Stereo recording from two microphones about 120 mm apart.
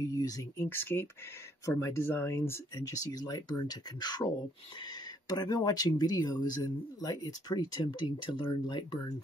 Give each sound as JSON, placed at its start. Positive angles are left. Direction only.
{"t": 0.0, "sound": "speech", "side_deg": 30}
{"t": 0.7, "sound": "speech", "side_deg": 20}